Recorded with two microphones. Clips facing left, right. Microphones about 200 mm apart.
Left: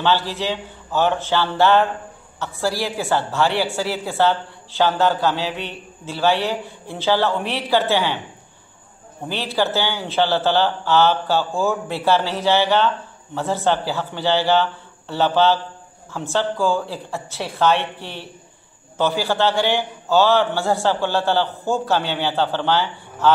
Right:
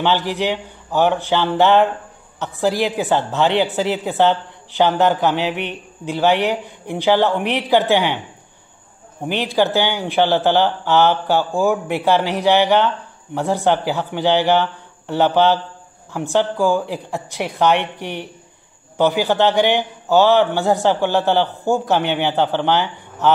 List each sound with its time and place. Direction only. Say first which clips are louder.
0.0 s speech: right 2 dB; 15° right (ahead or behind)
9.2 s speech: right 4 dB; 15° right (ahead or behind)